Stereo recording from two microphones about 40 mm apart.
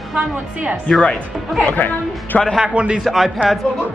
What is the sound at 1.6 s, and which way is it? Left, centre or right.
Speech, left.